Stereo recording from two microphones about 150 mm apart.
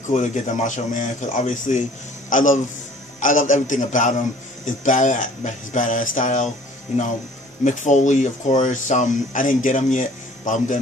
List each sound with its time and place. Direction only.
0.0 s speech: 55° left (ahead or behind)
7.6 s speech: 55° left (ahead or behind)